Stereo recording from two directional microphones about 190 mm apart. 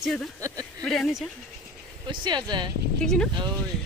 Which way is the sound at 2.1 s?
25° right (ahead or behind).